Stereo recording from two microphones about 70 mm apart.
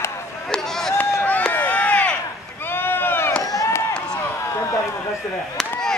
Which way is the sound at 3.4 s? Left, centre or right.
Left.